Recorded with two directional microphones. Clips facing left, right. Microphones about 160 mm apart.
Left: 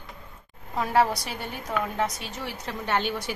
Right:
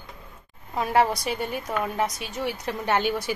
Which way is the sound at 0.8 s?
15° right (ahead or behind).